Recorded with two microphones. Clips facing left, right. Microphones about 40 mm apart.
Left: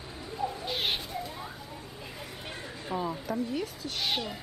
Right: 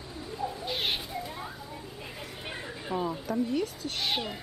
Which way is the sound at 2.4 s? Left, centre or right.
Centre.